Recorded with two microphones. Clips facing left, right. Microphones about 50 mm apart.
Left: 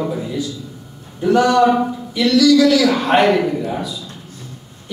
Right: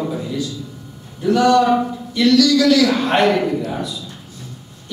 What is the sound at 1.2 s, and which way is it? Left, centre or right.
Speech, left.